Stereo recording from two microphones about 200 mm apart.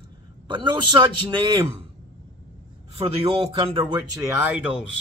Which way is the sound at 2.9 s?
30° right (ahead or behind).